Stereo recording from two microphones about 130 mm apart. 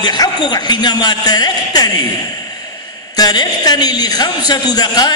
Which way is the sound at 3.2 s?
30° left (ahead or behind).